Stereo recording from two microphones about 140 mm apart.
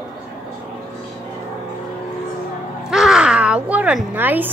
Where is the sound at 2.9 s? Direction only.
5° right (ahead or behind).